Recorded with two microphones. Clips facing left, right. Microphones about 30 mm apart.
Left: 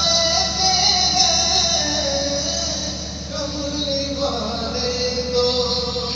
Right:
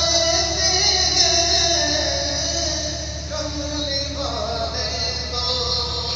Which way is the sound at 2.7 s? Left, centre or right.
Right.